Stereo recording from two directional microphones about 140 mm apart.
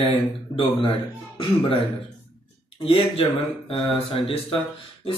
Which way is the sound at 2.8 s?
40° left (ahead or behind).